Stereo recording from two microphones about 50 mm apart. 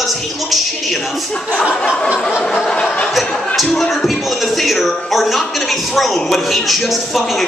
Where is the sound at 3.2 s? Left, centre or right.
Centre.